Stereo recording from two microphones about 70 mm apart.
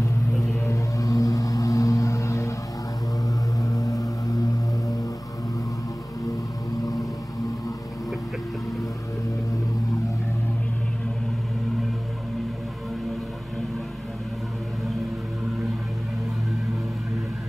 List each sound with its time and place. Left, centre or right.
0.7 s music: left
3.5 s music: left
6.8 s whale vocalization: left